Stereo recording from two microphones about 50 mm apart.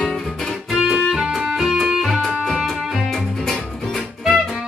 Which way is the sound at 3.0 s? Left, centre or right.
Centre.